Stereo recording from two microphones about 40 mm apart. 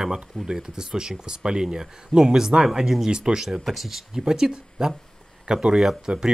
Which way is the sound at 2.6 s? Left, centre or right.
Centre.